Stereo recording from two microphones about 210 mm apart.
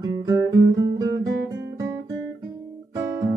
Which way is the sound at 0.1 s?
15° right (ahead or behind).